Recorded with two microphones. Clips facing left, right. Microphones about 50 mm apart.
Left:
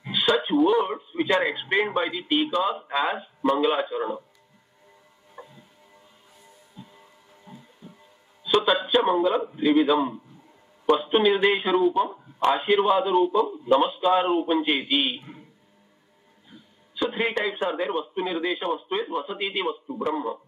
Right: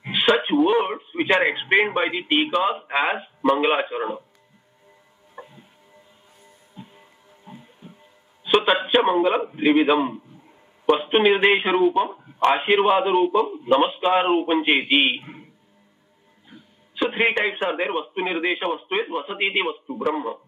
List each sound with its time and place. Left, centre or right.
0.0 s a sound: right
0.7 s speech: right
5.4 s music: right
6.7 s music: right
8.6 s a man's voice: right
17.1 s a man's voice: right